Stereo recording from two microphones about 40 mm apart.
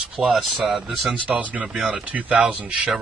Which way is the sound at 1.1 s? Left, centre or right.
Right.